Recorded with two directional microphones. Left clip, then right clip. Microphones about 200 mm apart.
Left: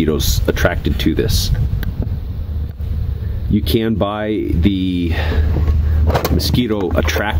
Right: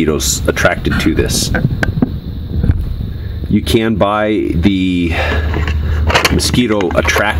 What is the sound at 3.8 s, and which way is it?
Speech, 25° right (ahead or behind).